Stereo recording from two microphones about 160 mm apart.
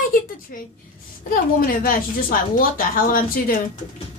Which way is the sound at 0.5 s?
60° left (ahead or behind).